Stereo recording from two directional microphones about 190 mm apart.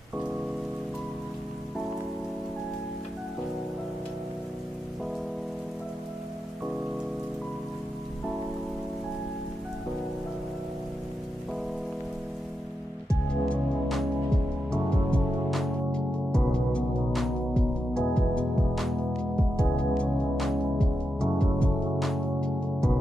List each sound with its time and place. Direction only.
13.3 s music: centre (ahead or behind)